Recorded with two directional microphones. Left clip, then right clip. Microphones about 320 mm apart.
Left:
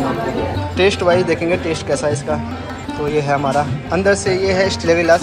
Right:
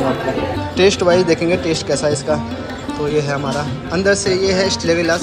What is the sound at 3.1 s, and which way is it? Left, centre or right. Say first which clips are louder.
Speech: left 5 dB; centre.